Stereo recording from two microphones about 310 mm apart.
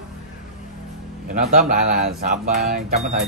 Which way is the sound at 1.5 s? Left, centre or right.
Right.